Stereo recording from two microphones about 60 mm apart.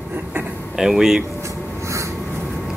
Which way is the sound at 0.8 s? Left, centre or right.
Centre.